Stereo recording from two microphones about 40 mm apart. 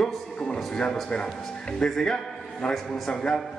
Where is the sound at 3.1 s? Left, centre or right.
Left.